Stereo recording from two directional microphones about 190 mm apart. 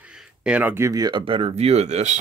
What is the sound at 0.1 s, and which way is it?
Speech, 5° right (ahead or behind).